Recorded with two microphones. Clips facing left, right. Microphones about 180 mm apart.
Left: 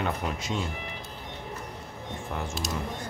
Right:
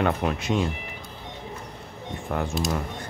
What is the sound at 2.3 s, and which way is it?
Speech, 65° right (ahead or behind).